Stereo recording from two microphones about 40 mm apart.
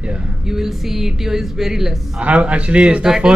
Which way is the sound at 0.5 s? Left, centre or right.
Centre.